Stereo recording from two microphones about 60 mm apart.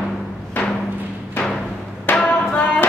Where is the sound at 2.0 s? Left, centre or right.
Left.